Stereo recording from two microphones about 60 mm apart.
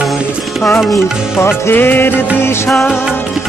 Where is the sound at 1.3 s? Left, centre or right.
Left.